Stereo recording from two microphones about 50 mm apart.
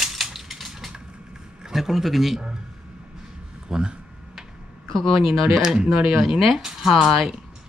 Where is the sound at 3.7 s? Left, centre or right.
Centre.